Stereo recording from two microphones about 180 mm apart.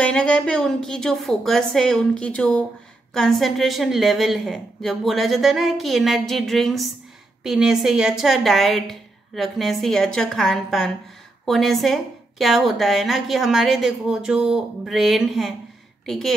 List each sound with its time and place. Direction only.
0.0 s a woman's voice: 5° left (ahead or behind)